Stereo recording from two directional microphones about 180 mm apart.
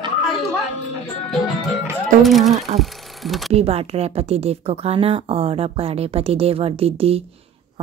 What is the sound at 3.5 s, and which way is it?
Speech, 35° right (ahead or behind).